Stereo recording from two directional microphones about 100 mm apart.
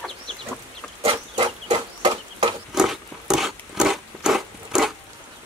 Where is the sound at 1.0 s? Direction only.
60° right (ahead or behind).